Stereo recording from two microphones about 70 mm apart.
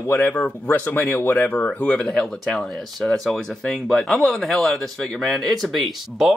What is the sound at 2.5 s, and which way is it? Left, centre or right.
Speech, centre.